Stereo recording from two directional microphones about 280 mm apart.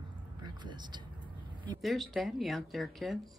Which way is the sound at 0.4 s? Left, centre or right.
Centre.